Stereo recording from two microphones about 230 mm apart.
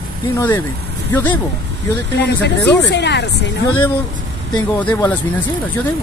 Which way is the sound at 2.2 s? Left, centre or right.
Left.